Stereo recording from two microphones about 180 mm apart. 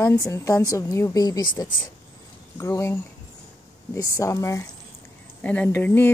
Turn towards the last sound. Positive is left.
turn(degrees=10)  # may be behind; listen again after turning